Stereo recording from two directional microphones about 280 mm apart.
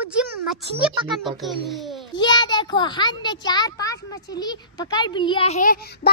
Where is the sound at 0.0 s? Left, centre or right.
Centre.